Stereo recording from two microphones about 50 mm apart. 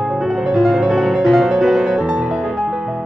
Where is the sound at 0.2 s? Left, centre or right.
Centre.